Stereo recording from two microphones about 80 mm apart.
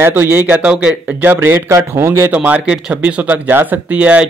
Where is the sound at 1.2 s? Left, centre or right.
Right.